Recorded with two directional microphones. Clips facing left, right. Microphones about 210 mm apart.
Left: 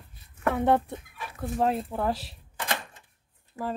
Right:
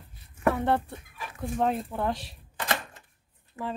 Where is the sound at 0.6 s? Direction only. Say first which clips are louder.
Left 3 dB; 15° left (ahead or behind).